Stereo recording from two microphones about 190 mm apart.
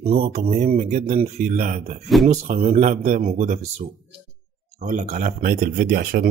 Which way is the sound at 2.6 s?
40° right (ahead or behind).